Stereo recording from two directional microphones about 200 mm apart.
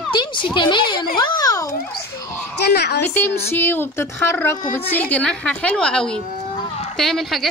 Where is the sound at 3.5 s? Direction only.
10° left (ahead or behind).